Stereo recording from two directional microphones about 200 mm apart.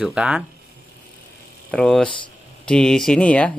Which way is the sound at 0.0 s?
5° right (ahead or behind).